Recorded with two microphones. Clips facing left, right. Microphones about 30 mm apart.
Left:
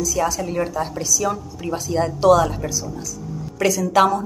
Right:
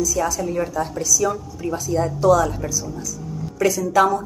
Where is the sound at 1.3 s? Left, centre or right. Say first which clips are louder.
Even; left.